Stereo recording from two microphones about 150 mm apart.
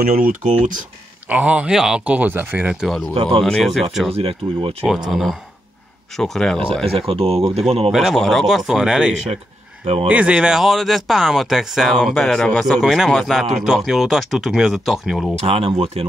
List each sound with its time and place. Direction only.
0.2 s speech: 60° right (ahead or behind)
1.3 s speech: 10° right (ahead or behind)
3.2 s speech: 40° right (ahead or behind)
3.4 s speech: centre (ahead or behind)
4.1 s speech: 40° right (ahead or behind)
4.8 s speech: centre (ahead or behind)
6.8 s speech: 40° right (ahead or behind)
7.9 s speech: centre (ahead or behind)
15.3 s speech: 45° right (ahead or behind)